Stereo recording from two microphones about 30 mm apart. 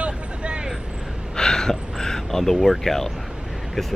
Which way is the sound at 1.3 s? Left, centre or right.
Left.